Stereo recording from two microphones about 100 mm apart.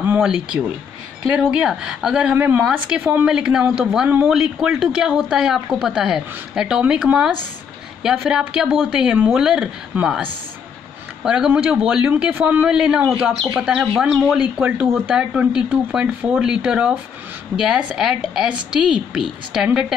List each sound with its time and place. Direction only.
0.2 s speech: 10° right (ahead or behind)
2.3 s speech: 20° right (ahead or behind)